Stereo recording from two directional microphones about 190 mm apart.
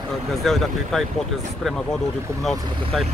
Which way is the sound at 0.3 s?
Centre (ahead or behind).